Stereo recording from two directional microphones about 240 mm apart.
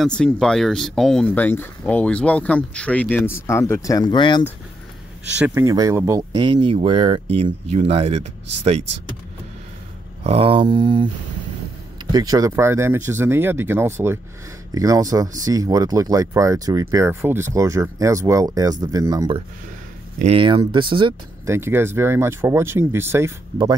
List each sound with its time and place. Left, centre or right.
0.0 s speech: centre
5.4 s speech: centre
10.2 s speech: right
12.1 s speech: centre
21.5 s speech: centre